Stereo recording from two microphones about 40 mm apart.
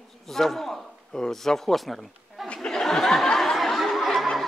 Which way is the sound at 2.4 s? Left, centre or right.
Left.